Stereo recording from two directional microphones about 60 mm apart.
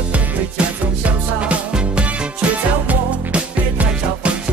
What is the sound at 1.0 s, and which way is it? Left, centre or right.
Music, right.